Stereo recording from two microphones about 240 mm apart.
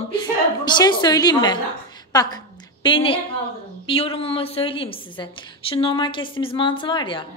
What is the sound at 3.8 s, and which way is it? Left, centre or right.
A woman's voice, left.